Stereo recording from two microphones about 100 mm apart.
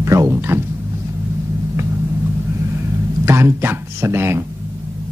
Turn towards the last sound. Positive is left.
turn(degrees=-25)  # may be behind; listen again after turning